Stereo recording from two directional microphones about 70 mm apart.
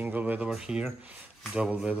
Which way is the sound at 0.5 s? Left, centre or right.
Centre.